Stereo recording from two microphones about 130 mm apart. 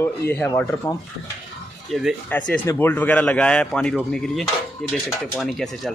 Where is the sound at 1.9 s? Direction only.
5° right (ahead or behind).